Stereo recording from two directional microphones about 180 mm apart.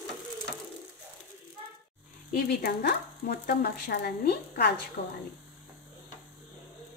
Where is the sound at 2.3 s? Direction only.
60° left (ahead or behind).